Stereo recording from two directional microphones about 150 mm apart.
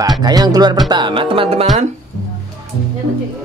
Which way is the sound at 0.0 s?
25° right (ahead or behind).